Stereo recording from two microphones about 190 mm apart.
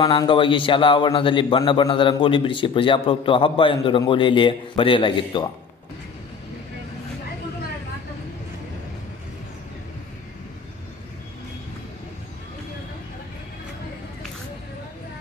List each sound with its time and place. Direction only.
0.0 s a man's voice: 25° left (ahead or behind)